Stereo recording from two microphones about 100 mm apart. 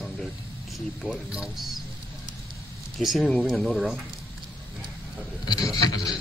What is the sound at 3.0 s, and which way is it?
Speech, centre (ahead or behind).